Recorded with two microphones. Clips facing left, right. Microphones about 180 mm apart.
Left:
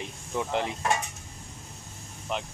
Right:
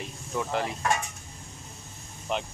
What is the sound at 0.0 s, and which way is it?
Speech, 20° left (ahead or behind).